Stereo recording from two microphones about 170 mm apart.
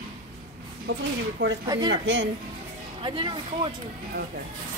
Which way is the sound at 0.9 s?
90° right.